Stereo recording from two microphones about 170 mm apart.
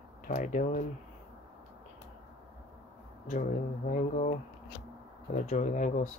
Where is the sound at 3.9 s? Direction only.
50° left (ahead or behind).